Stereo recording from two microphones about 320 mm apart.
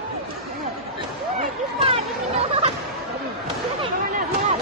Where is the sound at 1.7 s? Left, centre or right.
Centre.